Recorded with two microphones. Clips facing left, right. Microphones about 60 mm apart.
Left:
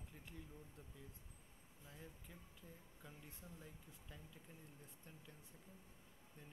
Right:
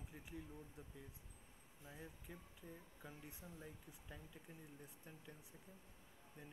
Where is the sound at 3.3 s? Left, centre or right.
Centre.